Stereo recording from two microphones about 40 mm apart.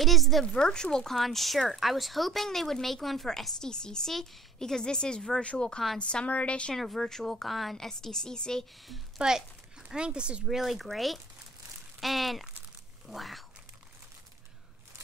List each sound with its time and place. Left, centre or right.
0.0 s speech: centre
0.5 s a woman's voice: centre
1.1 s a woman's voice: centre; by 6.7 s left
6.7 s a woman's voice: centre
7.4 s speech: centre
7.7 s a woman's voice: centre
9.2 s speech: right
10.4 s speech: centre